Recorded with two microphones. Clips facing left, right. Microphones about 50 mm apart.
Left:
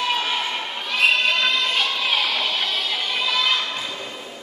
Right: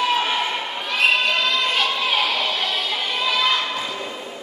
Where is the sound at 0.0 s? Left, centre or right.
Centre.